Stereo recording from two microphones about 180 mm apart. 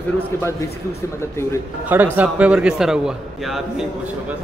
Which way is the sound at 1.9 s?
10° right (ahead or behind).